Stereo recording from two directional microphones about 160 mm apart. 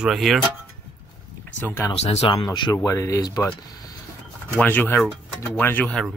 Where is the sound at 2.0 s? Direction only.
40° left (ahead or behind); by 3.4 s 25° left (ahead or behind).